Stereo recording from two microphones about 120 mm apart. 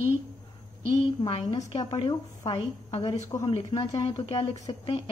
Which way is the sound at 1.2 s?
40° left (ahead or behind).